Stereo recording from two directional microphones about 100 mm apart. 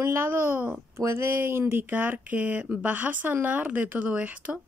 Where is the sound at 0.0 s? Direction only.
25° right (ahead or behind).